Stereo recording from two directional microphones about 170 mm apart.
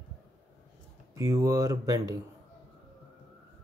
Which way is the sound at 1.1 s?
20° right (ahead or behind).